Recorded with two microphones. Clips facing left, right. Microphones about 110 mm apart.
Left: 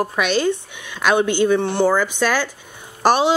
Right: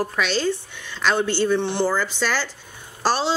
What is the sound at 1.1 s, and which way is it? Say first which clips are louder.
Speech: left 6 dB; 60° left (ahead or behind).